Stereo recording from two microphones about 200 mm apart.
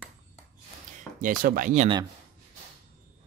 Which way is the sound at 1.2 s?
45° right (ahead or behind).